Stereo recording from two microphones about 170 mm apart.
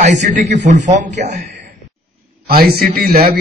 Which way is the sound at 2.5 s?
65° right (ahead or behind).